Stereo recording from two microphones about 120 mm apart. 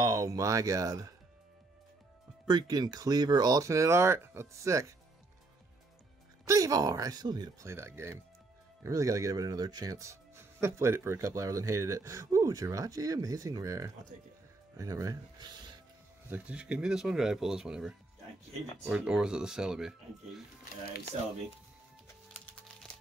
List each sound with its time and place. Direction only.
0.0 s speech: 25° right (ahead or behind)
2.4 s speech: 35° right (ahead or behind)
6.4 s speech: 25° right (ahead or behind)
7.6 s speech: 20° right (ahead or behind); by 15.8 s 40° right (ahead or behind)
16.3 s speech: 10° right (ahead or behind)
21.1 s speech: 75° right (ahead or behind)
22.0 s music: 20° left (ahead or behind)